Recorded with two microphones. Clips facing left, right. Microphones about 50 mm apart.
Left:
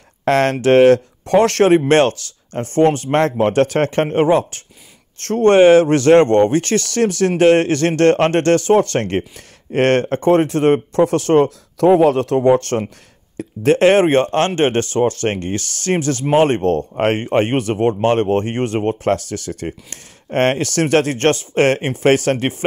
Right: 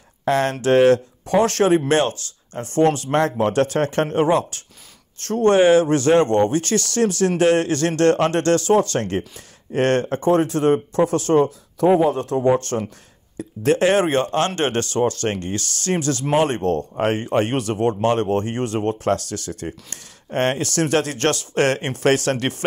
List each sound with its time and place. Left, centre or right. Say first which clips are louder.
0.2 s speech: left 5 dB; left
2.6 s speech: left 3 dB; left
5.2 s speech: left 5 dB; left
11.4 s speech: left 4 dB; left